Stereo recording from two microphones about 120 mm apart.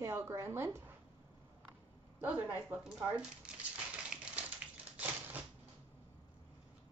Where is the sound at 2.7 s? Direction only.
5° right (ahead or behind).